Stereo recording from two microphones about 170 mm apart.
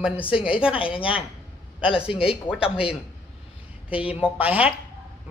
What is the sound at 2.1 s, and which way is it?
Speech, 35° left (ahead or behind).